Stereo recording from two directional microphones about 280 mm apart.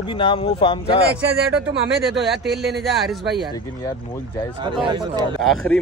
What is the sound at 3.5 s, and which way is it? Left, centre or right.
Speech, centre.